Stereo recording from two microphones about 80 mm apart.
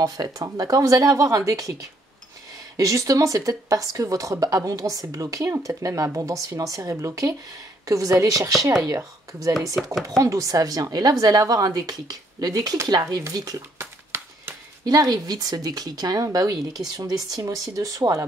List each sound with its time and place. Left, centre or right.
0.2 s speech: right
13.7 s a sound: right
14.9 s speech: right